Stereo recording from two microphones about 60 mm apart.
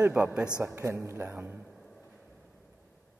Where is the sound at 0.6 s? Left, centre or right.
Right.